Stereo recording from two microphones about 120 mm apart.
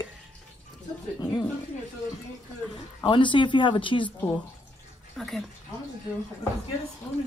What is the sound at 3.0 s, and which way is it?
Speech, 45° left (ahead or behind).